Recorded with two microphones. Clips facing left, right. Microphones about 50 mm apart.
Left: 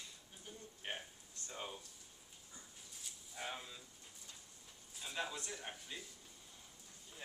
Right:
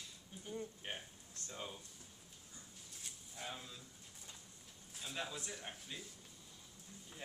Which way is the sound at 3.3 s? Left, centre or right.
Centre.